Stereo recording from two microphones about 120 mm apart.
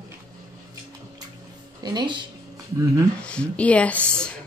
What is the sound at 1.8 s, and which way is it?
Speech, 35° right (ahead or behind).